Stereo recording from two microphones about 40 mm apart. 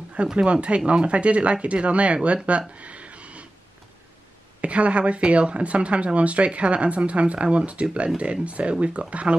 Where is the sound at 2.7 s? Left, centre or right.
Right.